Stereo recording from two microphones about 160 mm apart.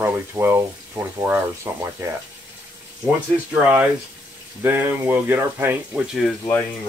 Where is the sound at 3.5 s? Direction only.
10° right (ahead or behind).